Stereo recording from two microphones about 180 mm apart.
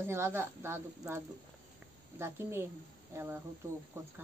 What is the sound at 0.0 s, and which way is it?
A woman's voice, 15° right (ahead or behind).